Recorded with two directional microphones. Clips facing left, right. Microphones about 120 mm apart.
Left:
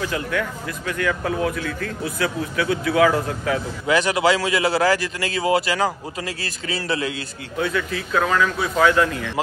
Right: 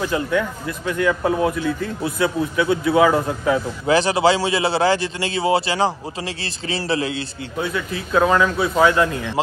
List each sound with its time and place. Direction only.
0.1 s a man's voice: 25° right (ahead or behind)